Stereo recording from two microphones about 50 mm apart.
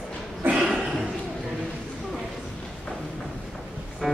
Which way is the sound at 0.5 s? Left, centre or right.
Centre.